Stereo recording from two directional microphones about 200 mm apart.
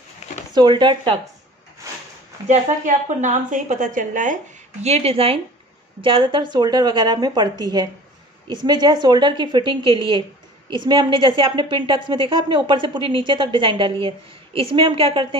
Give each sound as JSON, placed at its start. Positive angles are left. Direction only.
{"t": 0.5, "sound": "speech", "side_deg": -20}
{"t": 2.4, "sound": "a woman's voice", "side_deg": -35}